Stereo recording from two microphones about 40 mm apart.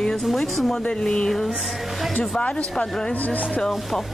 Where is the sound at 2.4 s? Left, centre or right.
Left.